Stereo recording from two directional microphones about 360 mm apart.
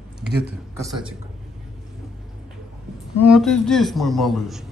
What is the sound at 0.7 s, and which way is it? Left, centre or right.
Speech, centre.